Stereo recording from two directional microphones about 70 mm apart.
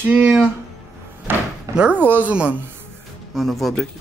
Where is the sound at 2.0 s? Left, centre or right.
Right.